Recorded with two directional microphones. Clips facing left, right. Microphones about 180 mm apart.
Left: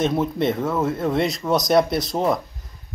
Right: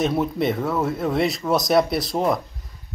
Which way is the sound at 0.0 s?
Centre (ahead or behind).